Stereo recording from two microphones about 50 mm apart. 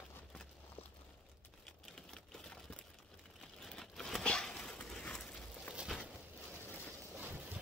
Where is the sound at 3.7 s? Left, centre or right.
Centre.